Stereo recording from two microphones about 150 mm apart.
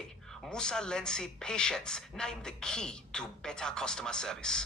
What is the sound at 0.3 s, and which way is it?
Speech, 5° left (ahead or behind).